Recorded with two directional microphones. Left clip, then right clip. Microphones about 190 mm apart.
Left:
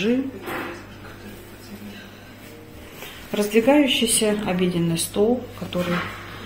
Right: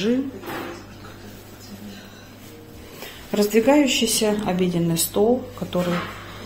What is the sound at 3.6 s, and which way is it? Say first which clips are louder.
Speech: left 1 dB; 20° right (ahead or behind).